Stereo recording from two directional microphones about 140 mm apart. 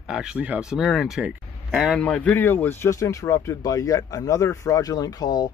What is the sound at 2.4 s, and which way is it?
Speech, 15° left (ahead or behind).